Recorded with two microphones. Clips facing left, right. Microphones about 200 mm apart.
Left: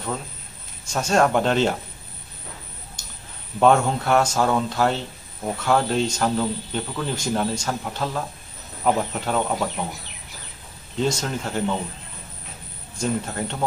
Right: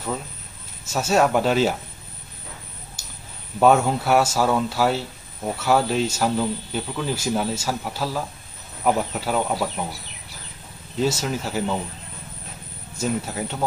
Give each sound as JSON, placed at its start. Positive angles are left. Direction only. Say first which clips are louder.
{"t": 0.8, "sound": "speech", "louder": "even", "side_deg": -5}
{"t": 3.0, "sound": "a sound", "louder": "even", "side_deg": -5}
{"t": 3.5, "sound": "speech", "louder": "right 1 dB", "side_deg": -5}
{"t": 11.0, "sound": "speech", "louder": "right 1 dB", "side_deg": -5}
{"t": 12.9, "sound": "speech", "louder": "even", "side_deg": -5}